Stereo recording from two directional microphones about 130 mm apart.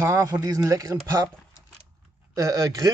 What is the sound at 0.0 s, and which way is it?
Speech, 25° right (ahead or behind).